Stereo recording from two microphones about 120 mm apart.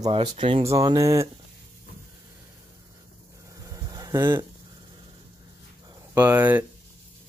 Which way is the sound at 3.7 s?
30° right (ahead or behind).